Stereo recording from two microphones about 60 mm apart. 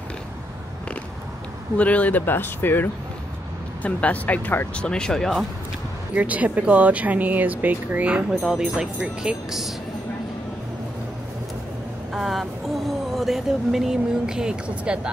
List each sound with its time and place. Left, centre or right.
1.8 s speech: left
4.7 s speech: centre
6.1 s speech: right
8.4 s speech: centre
12.1 s speech: centre